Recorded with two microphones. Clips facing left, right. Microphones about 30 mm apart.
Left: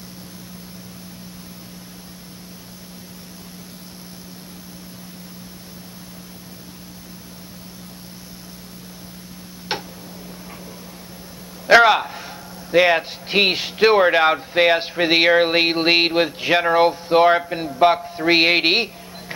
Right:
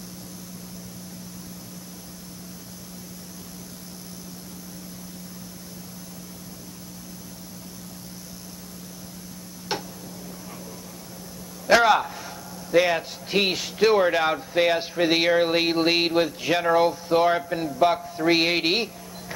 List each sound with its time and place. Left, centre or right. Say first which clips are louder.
9.7 s tick-tock: left 3 dB; left
11.6 s a man's voice: left 5 dB; left